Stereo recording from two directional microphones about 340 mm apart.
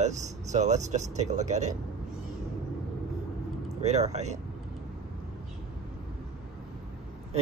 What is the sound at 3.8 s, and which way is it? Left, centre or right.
Speech, centre.